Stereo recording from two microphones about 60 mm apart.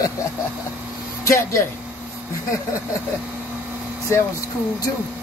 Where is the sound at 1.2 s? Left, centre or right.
Left.